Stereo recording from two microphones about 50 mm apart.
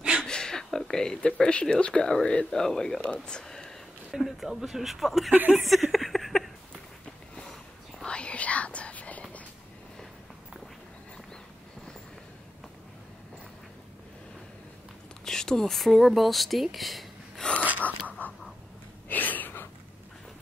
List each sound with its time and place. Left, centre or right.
0.2 s speech: centre
2.6 s speech: centre
3.0 s speech: centre
4.1 s speech: centre
5.3 s speech: right
5.6 s a sound: centre
8.0 s whispering: left
15.2 s speech: centre
17.4 s a sound: centre
17.7 s a sound: left